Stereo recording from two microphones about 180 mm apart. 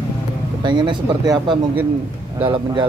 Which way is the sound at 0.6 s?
25° right (ahead or behind).